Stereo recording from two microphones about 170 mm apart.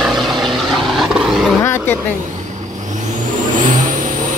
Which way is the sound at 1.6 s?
15° left (ahead or behind).